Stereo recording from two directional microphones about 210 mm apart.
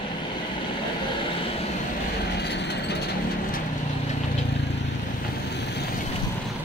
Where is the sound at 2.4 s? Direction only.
50° left (ahead or behind).